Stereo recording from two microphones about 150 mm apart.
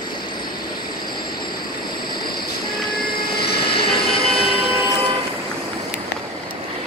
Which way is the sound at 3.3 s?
90° left.